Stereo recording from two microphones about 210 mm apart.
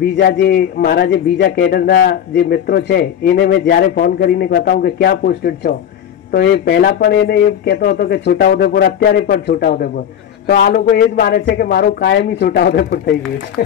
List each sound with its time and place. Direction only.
0.2 s speech: 45° left (ahead or behind)